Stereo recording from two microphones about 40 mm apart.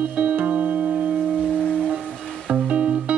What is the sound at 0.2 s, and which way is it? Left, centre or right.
Music, right.